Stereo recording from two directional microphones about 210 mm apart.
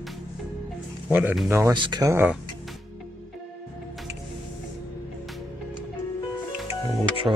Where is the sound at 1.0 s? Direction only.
10° right (ahead or behind).